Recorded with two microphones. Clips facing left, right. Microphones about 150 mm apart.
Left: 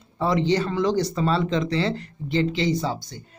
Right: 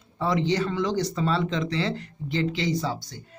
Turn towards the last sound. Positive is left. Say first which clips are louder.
# left 3 dB
turn(degrees=25)  # may be behind; listen again after turning